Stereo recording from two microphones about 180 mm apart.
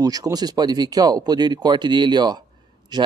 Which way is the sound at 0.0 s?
20° right (ahead or behind).